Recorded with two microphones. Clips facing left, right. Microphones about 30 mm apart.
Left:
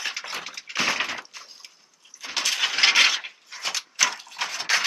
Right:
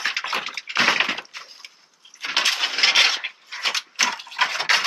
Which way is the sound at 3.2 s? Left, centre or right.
Right.